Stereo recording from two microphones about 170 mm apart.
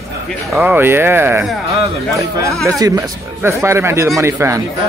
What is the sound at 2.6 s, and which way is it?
Speech, 20° right (ahead or behind).